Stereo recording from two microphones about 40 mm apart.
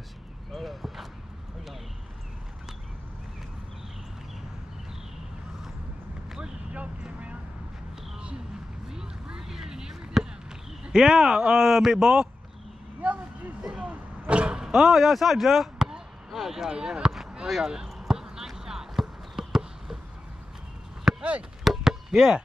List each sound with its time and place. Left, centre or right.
0.5 s speech: centre
8.9 s basketball bounce: centre
10.9 s speech: centre
13.6 s a sound: centre
13.8 s vehicle: right; by 15.0 s centre
15.0 s speech: centre
16.3 s a sound: centre
16.7 s speech: right
17.5 s basketball bounce: centre
21.2 s chop: right
21.6 s chop: centre